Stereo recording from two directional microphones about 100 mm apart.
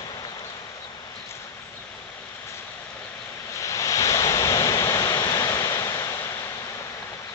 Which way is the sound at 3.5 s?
30° left (ahead or behind).